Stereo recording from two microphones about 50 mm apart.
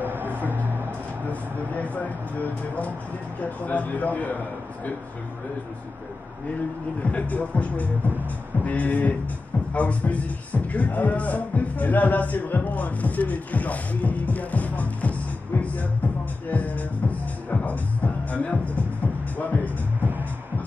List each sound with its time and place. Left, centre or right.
0.0 s music: right
1.8 s speech: left
7.0 s speech: left
15.6 s music: left
20.0 s music: right